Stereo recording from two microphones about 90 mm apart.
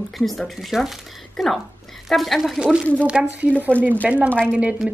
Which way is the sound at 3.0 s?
15° right (ahead or behind).